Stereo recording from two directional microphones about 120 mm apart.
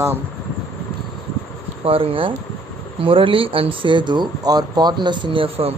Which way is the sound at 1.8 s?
50° right (ahead or behind).